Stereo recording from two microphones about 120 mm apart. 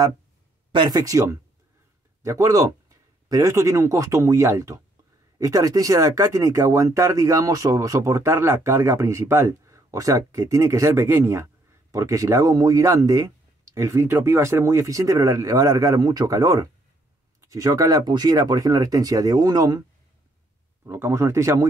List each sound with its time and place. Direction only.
0.7 s speech: 35° right (ahead or behind)
20.8 s speech: 20° right (ahead or behind)